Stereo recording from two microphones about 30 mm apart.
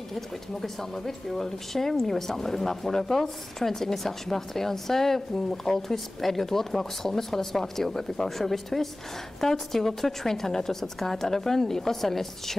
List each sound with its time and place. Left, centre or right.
0.1 s speech: centre